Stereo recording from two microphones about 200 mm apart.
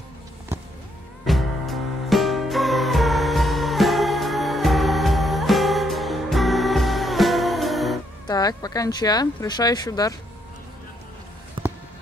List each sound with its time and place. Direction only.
1.2 s music: centre (ahead or behind)
8.3 s speech: 20° left (ahead or behind)
11.6 s a sound: 25° right (ahead or behind)